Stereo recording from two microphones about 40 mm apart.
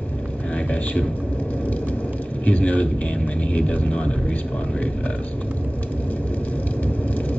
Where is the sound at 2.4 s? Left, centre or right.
Left.